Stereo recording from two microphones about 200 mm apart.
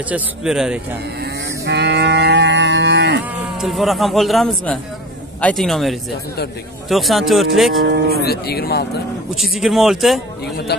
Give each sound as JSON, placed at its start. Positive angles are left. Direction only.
{"t": 0.1, "sound": "speech", "side_deg": -5}
{"t": 1.2, "sound": "cattle", "side_deg": -55}
{"t": 3.3, "sound": "speech", "side_deg": 0}
{"t": 7.8, "sound": "speech", "side_deg": -50}
{"t": 8.2, "sound": "speech", "side_deg": 50}
{"t": 9.3, "sound": "speech", "side_deg": 0}